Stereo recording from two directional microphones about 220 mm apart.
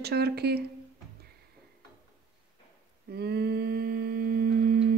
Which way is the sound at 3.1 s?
45° right (ahead or behind).